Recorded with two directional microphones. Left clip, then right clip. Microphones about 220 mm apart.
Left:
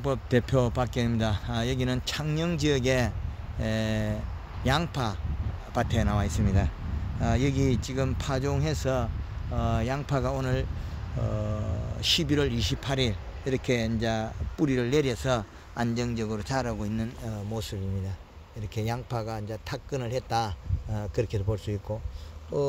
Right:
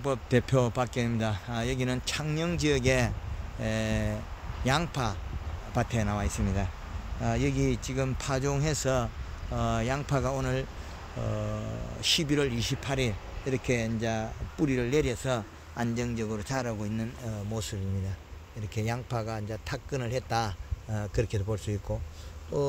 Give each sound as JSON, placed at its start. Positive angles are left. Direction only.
{"t": 0.0, "sound": "speech", "side_deg": 10}
{"t": 18.8, "sound": "speech", "side_deg": 10}